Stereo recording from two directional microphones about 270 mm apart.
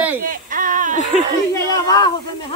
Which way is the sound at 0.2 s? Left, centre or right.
Right.